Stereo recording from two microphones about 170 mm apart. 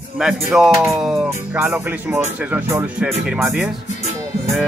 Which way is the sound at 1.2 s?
10° right (ahead or behind).